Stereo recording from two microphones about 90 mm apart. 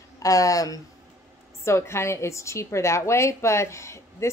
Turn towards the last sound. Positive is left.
turn(degrees=30)  # may be behind; listen again after turning